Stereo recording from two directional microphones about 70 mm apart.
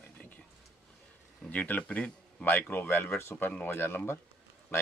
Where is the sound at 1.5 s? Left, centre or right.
Left.